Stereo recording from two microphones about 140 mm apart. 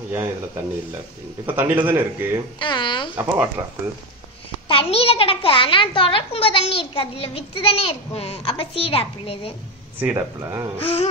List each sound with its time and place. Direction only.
0.1 s speech: 20° right (ahead or behind)
1.9 s speech: 15° right (ahead or behind)
2.6 s a child's voice: 35° left (ahead or behind)
3.2 s speech: 15° right (ahead or behind)
4.6 s a child's voice: 40° left (ahead or behind)
9.9 s speech: 15° right (ahead or behind)
10.8 s a sound: 45° left (ahead or behind)